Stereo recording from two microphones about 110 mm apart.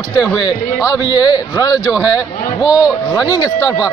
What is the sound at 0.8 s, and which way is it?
Speech, 40° left (ahead or behind).